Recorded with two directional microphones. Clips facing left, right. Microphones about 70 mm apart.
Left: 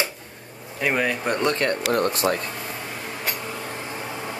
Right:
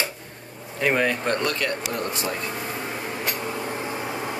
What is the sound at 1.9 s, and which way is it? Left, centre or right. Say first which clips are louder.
Speech: left 6 dB; left.